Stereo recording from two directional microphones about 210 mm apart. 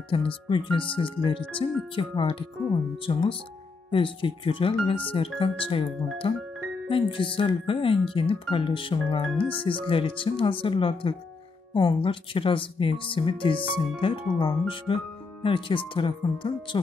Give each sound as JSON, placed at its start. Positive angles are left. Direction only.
{"t": 0.1, "sound": "speech", "side_deg": 25}
{"t": 9.3, "sound": "speech", "side_deg": 5}
{"t": 9.6, "sound": "speech", "side_deg": 25}